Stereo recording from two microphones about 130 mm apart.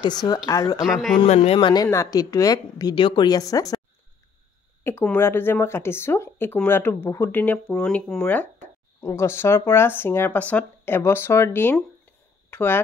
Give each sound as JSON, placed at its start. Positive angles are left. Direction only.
{"t": 0.0, "sound": "speech", "side_deg": 30}
{"t": 0.8, "sound": "a man's voice", "side_deg": 0}
{"t": 1.2, "sound": "a man's voice", "side_deg": 55}
{"t": 1.6, "sound": "speech", "side_deg": 30}
{"t": 5.0, "sound": "speech", "side_deg": 15}